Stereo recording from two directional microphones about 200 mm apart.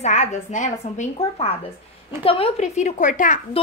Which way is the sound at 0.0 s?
35° left (ahead or behind).